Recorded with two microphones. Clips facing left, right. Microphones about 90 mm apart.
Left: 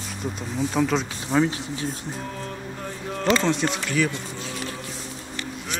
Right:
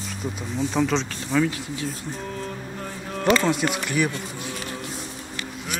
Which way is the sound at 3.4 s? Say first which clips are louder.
Even; 5° right (ahead or behind).